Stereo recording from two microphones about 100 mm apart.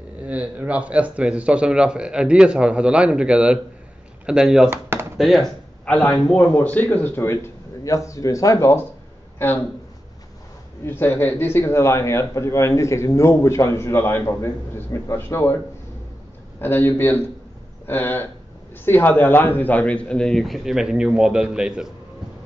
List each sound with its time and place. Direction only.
0.2 s speech: 15° right (ahead or behind)
4.6 s a sound: 25° right (ahead or behind)
5.1 s speech: centre (ahead or behind)
5.9 s a man's voice: 15° left (ahead or behind); by 8.8 s 30° left (ahead or behind)
10.9 s a man's voice: 20° left (ahead or behind)
16.5 s a man's voice: 20° left (ahead or behind); by 21.9 s 10° right (ahead or behind)